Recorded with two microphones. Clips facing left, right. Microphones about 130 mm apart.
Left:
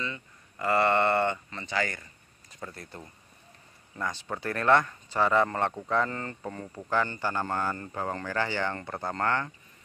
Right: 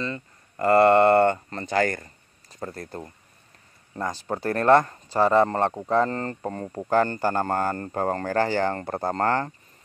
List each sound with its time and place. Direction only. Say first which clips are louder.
0.0 s speech: right 6 dB; 40° right (ahead or behind)